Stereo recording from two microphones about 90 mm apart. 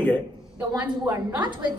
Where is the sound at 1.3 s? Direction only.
55° right (ahead or behind).